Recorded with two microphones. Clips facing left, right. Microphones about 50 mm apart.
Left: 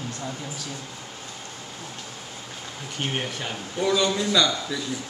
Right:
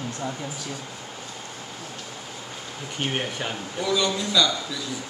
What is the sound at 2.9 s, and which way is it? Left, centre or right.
Speech, centre.